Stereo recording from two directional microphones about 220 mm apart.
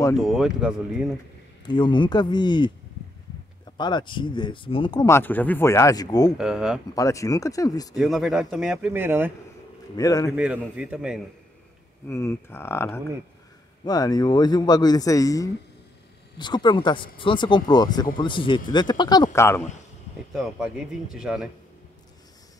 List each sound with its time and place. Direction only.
0.2 s speech: centre (ahead or behind)
1.7 s speech: 20° left (ahead or behind)
3.7 s speech: 20° left (ahead or behind)
6.3 s speech: 5° right (ahead or behind)
7.0 s a man's voice: 15° left (ahead or behind)
7.9 s speech: centre (ahead or behind)
9.9 s a man's voice: 15° left (ahead or behind)
10.3 s speech: 5° right (ahead or behind)
12.1 s a man's voice: 15° left (ahead or behind)
20.3 s speech: centre (ahead or behind)